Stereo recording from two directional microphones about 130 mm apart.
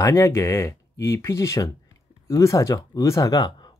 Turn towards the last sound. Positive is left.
turn(degrees=30)  # may be behind; listen again after turning